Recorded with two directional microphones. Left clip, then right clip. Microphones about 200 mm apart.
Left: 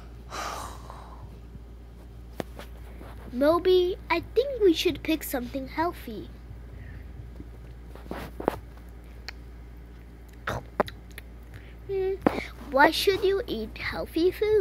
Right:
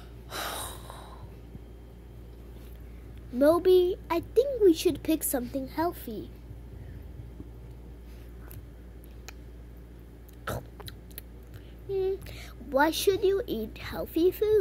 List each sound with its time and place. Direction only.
0.3 s snort: 15° right (ahead or behind)
3.3 s speech: 15° right (ahead or behind)
10.4 s a sound: 15° right (ahead or behind)
11.9 s a woman's voice: 15° right (ahead or behind)